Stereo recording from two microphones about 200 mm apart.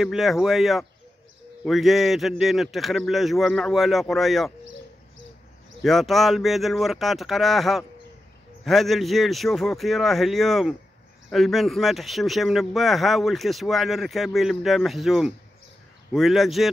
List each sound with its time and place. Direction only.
0.0 s speech: centre (ahead or behind)
5.8 s speech: centre (ahead or behind)